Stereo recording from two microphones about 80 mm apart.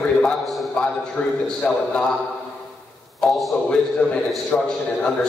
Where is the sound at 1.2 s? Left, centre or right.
Centre.